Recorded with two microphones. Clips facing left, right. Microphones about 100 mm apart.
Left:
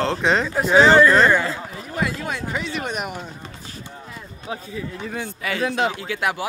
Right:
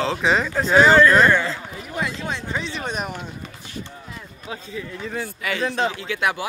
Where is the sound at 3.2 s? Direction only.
35° left (ahead or behind).